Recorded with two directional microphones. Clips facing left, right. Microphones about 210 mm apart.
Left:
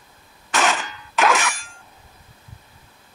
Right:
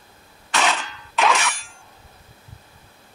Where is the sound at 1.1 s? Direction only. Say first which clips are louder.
Left 1 dB; centre (ahead or behind).